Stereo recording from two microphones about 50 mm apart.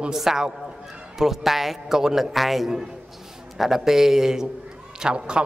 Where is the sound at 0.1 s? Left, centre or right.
Centre.